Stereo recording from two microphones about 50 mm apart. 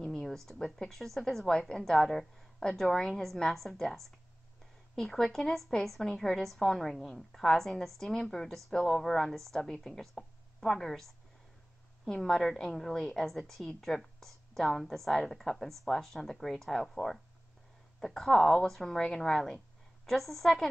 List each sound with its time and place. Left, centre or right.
0.0 s a sound: centre
0.5 s a woman's voice: centre
12.1 s a woman's voice: centre